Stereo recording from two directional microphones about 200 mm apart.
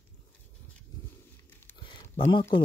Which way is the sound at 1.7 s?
25° left (ahead or behind).